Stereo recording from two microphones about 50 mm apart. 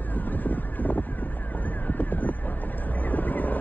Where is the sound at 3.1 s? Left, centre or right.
Left.